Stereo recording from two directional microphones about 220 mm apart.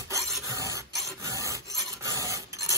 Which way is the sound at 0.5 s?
15° right (ahead or behind).